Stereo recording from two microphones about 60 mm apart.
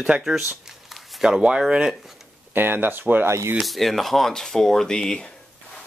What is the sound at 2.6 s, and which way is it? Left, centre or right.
Speech, right.